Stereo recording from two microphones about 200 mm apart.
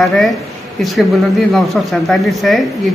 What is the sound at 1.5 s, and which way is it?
A woman's voice, centre (ahead or behind).